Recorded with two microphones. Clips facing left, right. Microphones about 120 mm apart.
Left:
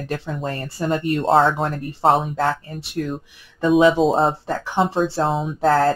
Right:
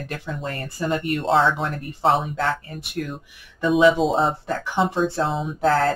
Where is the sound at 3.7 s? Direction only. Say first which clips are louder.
Left 1 dB; 40° left (ahead or behind).